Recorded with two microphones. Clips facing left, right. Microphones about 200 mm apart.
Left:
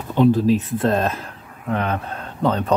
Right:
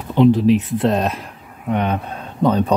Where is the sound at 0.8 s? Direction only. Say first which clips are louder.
Right 1 dB; 15° right (ahead or behind).